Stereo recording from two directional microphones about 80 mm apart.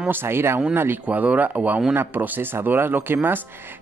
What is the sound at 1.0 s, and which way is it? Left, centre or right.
Speech, centre.